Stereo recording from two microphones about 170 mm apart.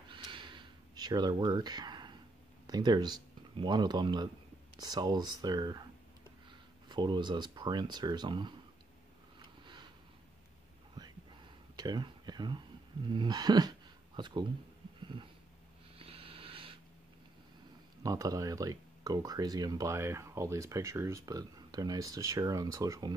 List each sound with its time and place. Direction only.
0.1 s gasp: 30° right (ahead or behind)
2.6 s speech: 25° right (ahead or behind)
6.9 s speech: 25° right (ahead or behind)
11.0 s a sound: 25° right (ahead or behind)
15.0 s dog: 30° right (ahead or behind)
16.0 s a sound: 35° right (ahead or behind)
18.0 s speech: 20° right (ahead or behind)